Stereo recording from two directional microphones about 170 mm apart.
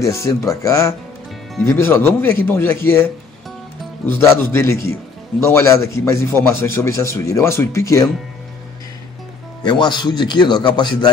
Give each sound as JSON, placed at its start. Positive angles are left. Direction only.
{"t": 0.0, "sound": "a man's voice", "side_deg": 15}
{"t": 9.6, "sound": "a man's voice", "side_deg": 25}